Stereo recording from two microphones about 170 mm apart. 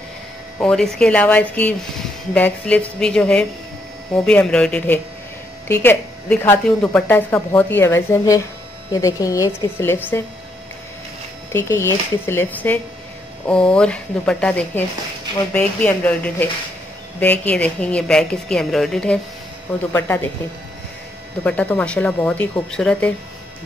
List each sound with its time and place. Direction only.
0.6 s speech: 5° left (ahead or behind)
11.5 s speech: 15° left (ahead or behind)
21.5 s speech: 5° left (ahead or behind)